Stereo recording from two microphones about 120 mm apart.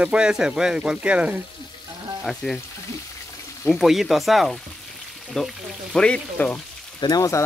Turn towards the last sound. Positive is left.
turn(degrees=30)  # may be behind; listen again after turning